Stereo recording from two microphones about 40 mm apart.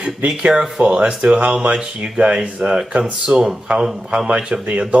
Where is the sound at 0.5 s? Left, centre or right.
Right.